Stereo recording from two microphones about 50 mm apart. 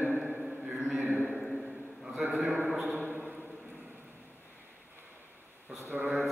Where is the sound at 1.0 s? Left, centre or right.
Right.